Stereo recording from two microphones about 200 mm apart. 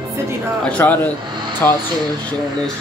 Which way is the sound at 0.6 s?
10° left (ahead or behind).